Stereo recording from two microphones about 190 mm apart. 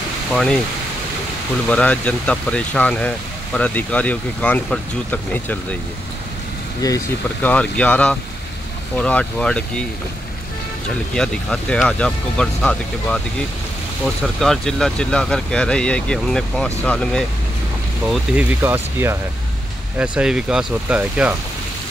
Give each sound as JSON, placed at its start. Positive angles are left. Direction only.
{"t": 0.3, "sound": "speech", "side_deg": 5}
{"t": 1.7, "sound": "speech", "side_deg": 5}
{"t": 7.4, "sound": "speech", "side_deg": 5}
{"t": 11.1, "sound": "speech", "side_deg": 5}
{"t": 18.0, "sound": "speech", "side_deg": -5}